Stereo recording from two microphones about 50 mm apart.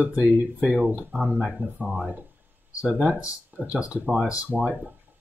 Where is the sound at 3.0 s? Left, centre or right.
Centre.